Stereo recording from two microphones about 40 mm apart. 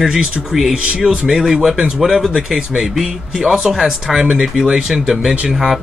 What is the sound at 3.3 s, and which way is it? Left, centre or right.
Speech, right.